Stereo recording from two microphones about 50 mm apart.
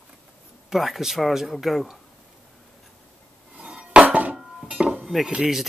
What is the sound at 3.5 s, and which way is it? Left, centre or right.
Dishes, right.